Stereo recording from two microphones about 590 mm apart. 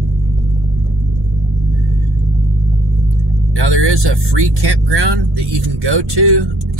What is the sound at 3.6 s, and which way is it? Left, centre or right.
Speech, right.